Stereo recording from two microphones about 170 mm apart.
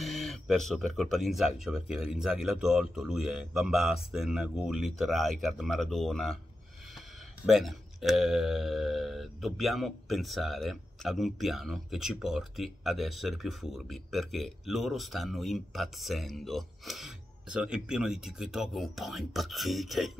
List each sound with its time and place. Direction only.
0.0 s speech: centre (ahead or behind)
7.4 s speech: centre (ahead or behind)